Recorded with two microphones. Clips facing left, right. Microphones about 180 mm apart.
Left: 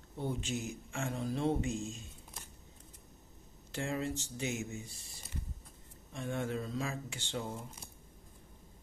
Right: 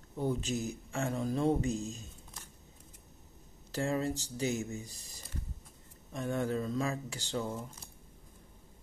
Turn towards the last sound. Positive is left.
turn(degrees=-40)  # may be behind; listen again after turning